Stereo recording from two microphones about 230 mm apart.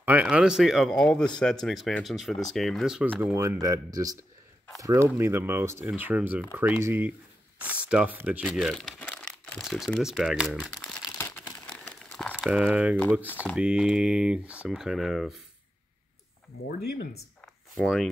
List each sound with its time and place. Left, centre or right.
0.0 s speech: centre
13.3 s speech: centre
13.6 s speech: centre
17.7 s speech: centre